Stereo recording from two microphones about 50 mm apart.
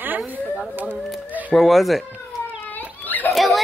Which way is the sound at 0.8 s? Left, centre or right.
Right.